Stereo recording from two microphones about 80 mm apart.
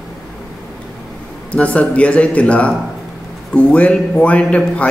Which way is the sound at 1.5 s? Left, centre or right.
Centre.